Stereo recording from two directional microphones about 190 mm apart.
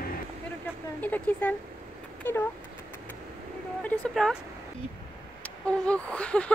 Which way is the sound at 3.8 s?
5° left (ahead or behind).